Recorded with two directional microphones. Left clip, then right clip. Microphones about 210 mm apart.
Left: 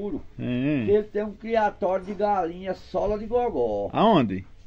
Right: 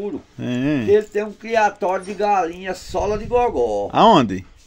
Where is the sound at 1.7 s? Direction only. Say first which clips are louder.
Right 4 dB; 5° right (ahead or behind).